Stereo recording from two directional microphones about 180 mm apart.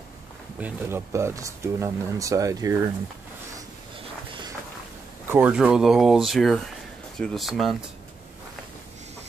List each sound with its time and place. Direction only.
0.6 s speech: 10° right (ahead or behind)
5.3 s speech: 5° right (ahead or behind)